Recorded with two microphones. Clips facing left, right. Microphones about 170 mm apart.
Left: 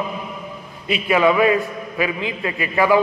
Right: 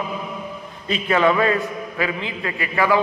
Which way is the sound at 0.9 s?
10° left (ahead or behind).